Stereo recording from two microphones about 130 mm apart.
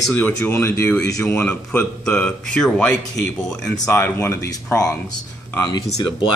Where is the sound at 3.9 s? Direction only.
20° left (ahead or behind).